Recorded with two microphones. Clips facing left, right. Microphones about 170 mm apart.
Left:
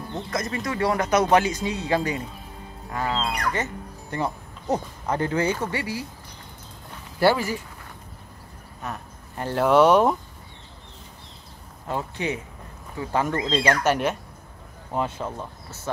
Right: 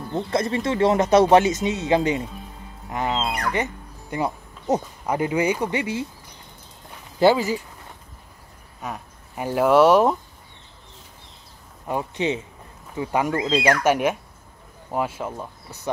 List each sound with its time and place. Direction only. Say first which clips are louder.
0.1 s speech: right 6 dB; 30° right (ahead or behind)
2.9 s music: right 2 dB; 20° right (ahead or behind)
3.4 s speech: right 2 dB; 15° right (ahead or behind)
7.2 s speech: right 3 dB; 20° right (ahead or behind)
8.8 s speech: right 1 dB; 10° right (ahead or behind)
11.9 s speech: right 3 dB; 20° right (ahead or behind)